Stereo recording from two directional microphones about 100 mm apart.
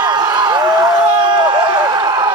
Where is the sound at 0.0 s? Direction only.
45° right (ahead or behind).